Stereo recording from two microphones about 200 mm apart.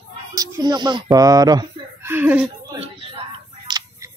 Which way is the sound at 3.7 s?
20° right (ahead or behind).